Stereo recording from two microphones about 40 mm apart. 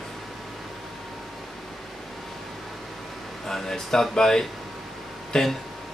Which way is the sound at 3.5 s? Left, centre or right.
Centre.